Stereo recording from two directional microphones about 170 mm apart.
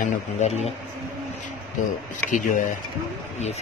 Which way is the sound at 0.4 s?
40° left (ahead or behind).